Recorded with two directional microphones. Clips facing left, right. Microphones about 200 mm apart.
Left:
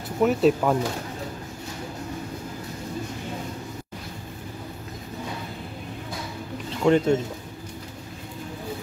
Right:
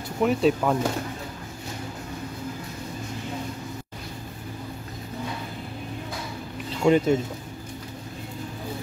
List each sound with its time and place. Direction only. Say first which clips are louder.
0.2 s speech: left 2 dB; centre (ahead or behind)
6.8 s speech: even; 5° right (ahead or behind)